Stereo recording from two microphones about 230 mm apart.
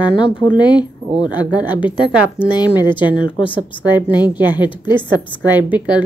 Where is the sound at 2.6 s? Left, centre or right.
Centre.